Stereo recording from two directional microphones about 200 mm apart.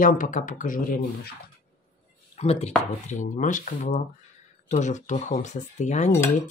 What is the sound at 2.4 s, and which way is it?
Speech, 30° left (ahead or behind).